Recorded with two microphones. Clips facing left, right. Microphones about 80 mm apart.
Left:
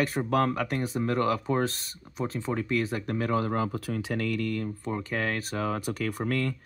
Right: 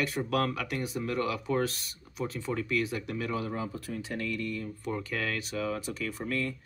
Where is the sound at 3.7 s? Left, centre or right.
Left.